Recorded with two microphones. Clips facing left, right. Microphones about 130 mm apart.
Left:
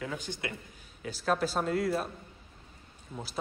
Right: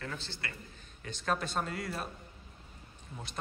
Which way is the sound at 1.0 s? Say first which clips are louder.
Left 5 dB; 5° left (ahead or behind).